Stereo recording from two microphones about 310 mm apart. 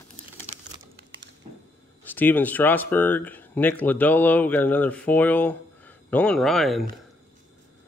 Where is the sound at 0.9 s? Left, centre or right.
Right.